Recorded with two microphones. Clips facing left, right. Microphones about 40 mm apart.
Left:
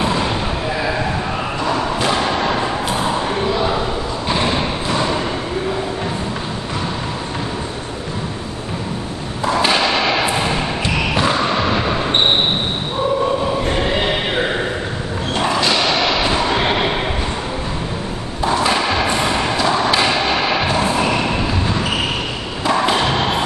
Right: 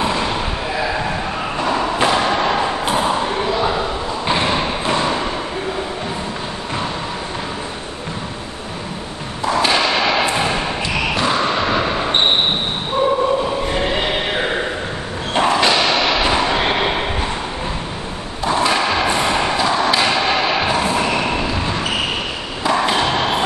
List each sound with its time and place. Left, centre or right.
0.0 s slam: centre
2.0 s thump: centre
4.3 s thump: centre
9.5 s thump: centre
10.3 s a sound: centre
11.1 s basketball bounce: centre
13.7 s neigh: centre
16.0 s a sound: centre
18.5 s skateboard: centre
19.1 s music: centre
21.0 s vehicle: centre
22.7 s a sound: centre